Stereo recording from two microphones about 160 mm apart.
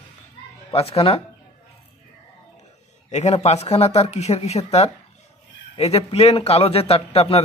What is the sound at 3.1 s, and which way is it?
Speech, 45° left (ahead or behind).